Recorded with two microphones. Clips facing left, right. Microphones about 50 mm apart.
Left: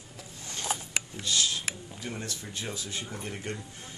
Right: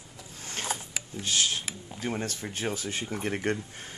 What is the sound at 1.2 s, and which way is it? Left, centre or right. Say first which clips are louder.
Speech: right 2 dB; right.